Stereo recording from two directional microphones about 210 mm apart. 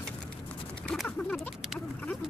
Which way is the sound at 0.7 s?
5° left (ahead or behind).